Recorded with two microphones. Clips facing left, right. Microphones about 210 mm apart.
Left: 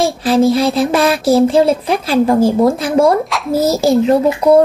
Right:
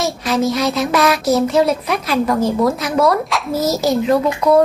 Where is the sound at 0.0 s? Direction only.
30° left (ahead or behind).